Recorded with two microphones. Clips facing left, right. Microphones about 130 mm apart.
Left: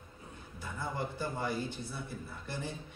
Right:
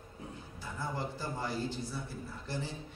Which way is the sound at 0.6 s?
55° left (ahead or behind).